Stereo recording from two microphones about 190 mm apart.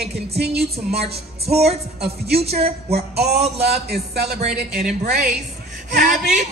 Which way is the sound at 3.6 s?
60° right (ahead or behind).